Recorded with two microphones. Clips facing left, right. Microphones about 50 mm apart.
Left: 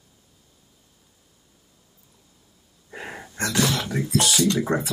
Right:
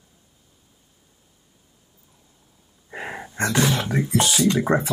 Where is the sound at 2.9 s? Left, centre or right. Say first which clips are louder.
Right 4 dB; right.